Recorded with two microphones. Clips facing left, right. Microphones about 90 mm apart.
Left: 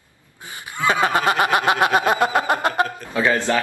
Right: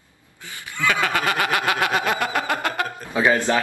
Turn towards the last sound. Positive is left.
turn(degrees=-15)  # may be behind; listen again after turning